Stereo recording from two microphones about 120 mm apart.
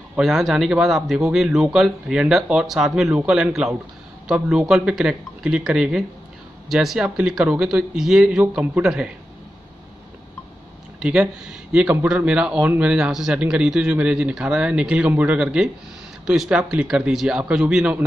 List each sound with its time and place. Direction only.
0.2 s speech: centre (ahead or behind)
11.0 s a man's voice: 10° right (ahead or behind)